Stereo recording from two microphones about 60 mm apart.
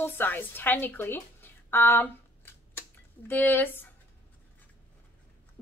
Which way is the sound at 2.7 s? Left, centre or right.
Left.